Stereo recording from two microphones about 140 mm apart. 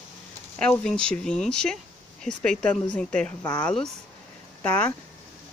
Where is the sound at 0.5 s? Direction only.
5° left (ahead or behind).